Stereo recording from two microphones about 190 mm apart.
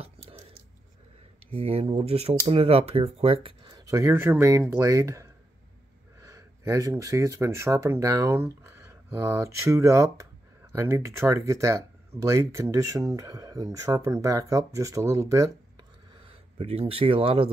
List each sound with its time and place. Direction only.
0.0 s a sound: 30° right (ahead or behind)
1.5 s speech: 30° right (ahead or behind); by 15.5 s 15° right (ahead or behind)
16.3 s speech: 30° right (ahead or behind)